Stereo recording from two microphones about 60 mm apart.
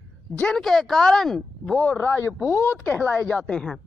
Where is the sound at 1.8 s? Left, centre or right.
Left.